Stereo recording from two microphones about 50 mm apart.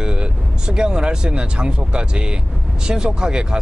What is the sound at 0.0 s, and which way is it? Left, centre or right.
Speech, centre.